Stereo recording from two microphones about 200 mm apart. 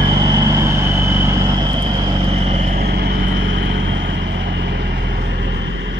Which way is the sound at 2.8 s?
50° right (ahead or behind).